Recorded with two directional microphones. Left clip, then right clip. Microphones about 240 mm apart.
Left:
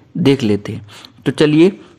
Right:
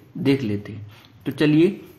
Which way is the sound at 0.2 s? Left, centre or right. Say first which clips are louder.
Left 8 dB; left.